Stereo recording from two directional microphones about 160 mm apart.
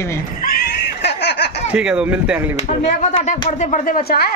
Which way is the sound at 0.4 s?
75° left (ahead or behind).